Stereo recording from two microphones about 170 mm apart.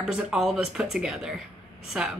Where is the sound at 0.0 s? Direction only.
5° right (ahead or behind).